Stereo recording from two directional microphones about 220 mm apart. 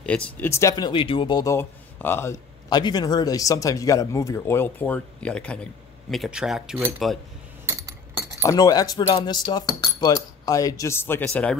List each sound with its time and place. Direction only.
0.0 s speech: 5° left (ahead or behind)
7.6 s a sound: 15° right (ahead or behind)
8.4 s speech: 15° left (ahead or behind)